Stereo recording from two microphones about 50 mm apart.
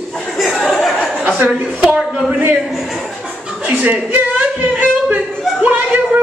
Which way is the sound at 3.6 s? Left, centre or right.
Right.